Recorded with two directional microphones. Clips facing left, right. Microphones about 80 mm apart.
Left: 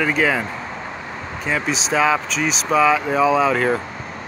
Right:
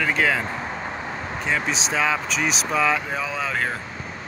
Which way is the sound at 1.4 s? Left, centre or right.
Centre.